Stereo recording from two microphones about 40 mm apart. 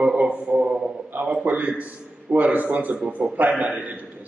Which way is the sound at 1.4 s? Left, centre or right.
Right.